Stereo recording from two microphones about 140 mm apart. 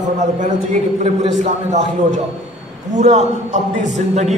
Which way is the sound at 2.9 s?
55° right (ahead or behind).